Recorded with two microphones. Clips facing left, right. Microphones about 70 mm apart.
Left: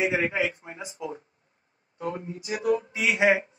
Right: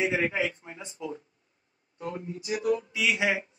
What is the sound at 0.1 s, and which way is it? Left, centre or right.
Speech, left.